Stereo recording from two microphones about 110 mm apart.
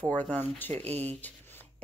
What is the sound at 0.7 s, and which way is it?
Speech, 80° right.